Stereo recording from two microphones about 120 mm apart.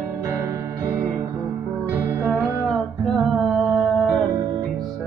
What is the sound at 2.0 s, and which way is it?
Music, 20° right (ahead or behind).